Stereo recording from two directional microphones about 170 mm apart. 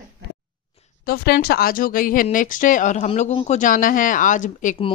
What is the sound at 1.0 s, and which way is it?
Speech, 65° left (ahead or behind).